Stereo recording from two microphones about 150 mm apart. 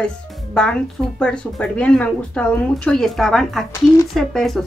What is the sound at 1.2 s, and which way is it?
Speech, 5° left (ahead or behind).